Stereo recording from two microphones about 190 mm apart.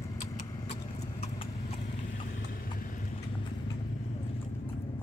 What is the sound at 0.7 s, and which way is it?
Horse, 35° left (ahead or behind).